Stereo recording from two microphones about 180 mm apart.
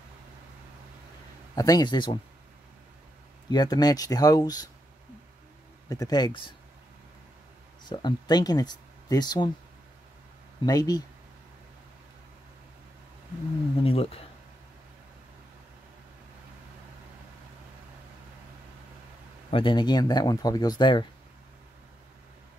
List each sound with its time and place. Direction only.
1.5 s speech: 20° left (ahead or behind)
3.4 s speech: 20° left (ahead or behind)
5.9 s speech: 20° left (ahead or behind)
7.8 s speech: 25° left (ahead or behind)
10.6 s speech: 20° left (ahead or behind)
13.7 s speech: 30° left (ahead or behind)
19.5 s speech: 25° left (ahead or behind)